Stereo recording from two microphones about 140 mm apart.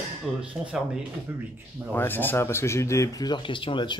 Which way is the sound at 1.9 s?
15° left (ahead or behind).